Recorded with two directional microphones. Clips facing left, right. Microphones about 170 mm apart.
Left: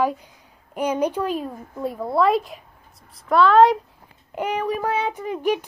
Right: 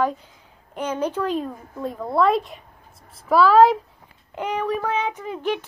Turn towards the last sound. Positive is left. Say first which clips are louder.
# left 3 dB
turn(degrees=10)  # may be behind; listen again after turning